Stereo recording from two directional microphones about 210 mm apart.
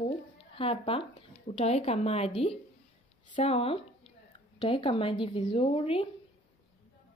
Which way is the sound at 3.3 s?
30° left (ahead or behind).